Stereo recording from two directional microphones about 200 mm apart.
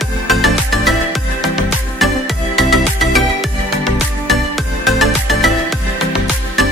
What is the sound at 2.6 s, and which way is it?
Music, centre (ahead or behind).